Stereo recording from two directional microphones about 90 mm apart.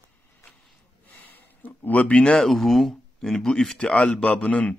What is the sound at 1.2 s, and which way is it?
A man's voice, 20° left (ahead or behind).